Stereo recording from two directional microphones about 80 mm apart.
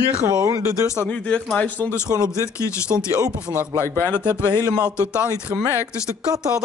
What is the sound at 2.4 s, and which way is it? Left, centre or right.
Speech, left.